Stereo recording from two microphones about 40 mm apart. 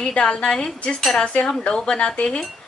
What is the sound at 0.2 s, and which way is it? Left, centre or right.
Speech, left.